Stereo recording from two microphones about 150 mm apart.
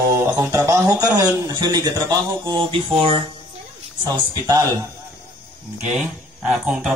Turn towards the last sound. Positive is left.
turn(degrees=-5)  # may be behind; listen again after turning